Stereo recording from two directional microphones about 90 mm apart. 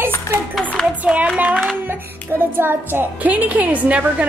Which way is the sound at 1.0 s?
15° right (ahead or behind).